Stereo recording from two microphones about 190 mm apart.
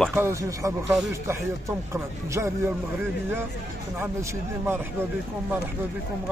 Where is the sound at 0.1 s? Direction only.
15° right (ahead or behind).